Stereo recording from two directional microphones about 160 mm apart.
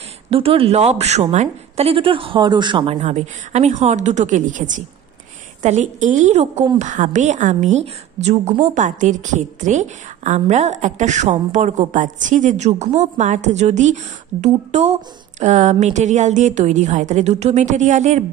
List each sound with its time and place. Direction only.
0.3 s a woman's voice: 35° right (ahead or behind)